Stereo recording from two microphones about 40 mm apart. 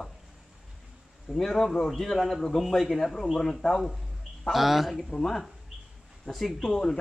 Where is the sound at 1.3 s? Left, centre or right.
Centre.